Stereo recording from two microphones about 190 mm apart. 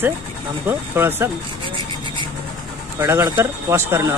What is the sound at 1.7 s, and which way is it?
Vehicle, 25° right (ahead or behind).